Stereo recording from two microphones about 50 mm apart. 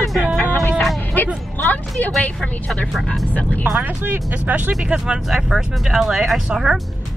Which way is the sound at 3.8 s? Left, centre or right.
Right.